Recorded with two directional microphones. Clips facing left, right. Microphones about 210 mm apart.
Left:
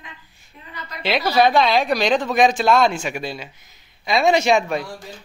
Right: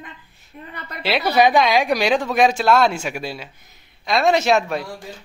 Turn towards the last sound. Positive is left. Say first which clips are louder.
# even
turn(degrees=0)  # may be behind; listen again after turning